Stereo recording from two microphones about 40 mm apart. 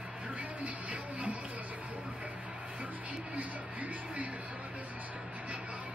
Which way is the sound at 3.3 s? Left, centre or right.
Right.